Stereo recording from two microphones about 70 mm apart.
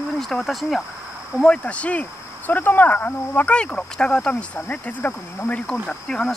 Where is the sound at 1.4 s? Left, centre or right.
Centre.